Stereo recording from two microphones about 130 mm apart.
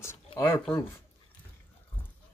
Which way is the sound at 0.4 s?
15° left (ahead or behind).